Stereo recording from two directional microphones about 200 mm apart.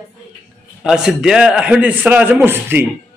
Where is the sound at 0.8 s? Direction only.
5° right (ahead or behind).